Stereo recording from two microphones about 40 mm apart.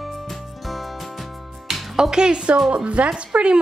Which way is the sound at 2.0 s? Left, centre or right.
Centre.